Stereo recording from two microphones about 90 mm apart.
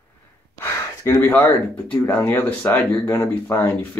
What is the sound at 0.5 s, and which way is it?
Gasp, 30° left (ahead or behind).